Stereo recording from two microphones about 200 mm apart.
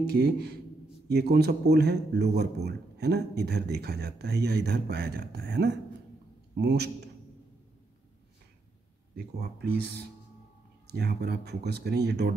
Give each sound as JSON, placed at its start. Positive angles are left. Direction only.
{"t": 0.1, "sound": "a man's voice", "side_deg": -55}
{"t": 9.1, "sound": "a man's voice", "side_deg": -55}